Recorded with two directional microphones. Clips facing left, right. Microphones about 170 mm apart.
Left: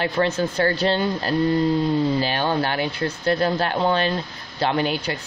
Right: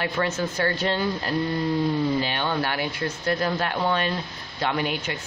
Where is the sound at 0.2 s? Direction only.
35° left (ahead or behind).